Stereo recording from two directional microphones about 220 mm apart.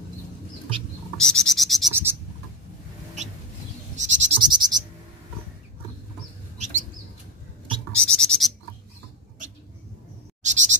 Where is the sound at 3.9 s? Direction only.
35° right (ahead or behind).